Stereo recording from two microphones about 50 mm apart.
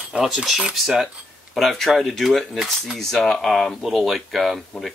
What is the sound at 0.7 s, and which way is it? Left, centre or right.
Speech, centre.